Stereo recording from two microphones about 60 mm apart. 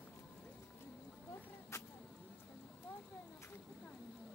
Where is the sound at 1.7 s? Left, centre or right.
Left.